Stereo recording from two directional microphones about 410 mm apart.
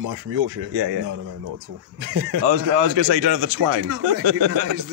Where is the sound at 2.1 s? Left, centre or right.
Right.